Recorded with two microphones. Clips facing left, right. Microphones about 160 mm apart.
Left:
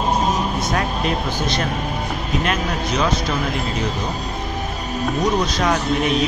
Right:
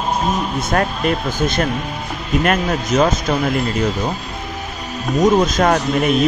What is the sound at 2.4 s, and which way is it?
Speech, 50° right (ahead or behind).